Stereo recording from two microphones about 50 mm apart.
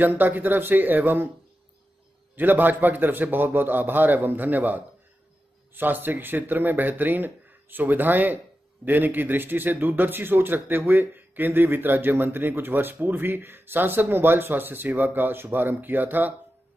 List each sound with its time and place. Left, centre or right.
0.2 s a man's voice: right
2.3 s a man's voice: right